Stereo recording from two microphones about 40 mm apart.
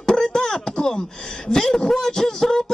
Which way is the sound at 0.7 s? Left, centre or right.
Centre.